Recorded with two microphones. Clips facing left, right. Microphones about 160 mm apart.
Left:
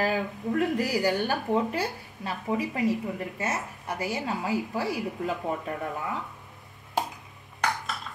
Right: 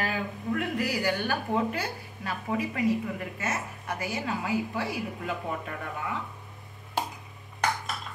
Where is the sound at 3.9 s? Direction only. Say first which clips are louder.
Left 2 dB; 30° left (ahead or behind).